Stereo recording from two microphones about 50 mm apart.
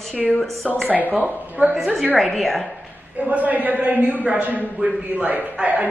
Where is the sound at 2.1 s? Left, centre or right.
Centre.